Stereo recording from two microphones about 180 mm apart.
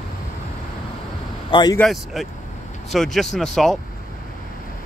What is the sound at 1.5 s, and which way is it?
Speech, 25° left (ahead or behind).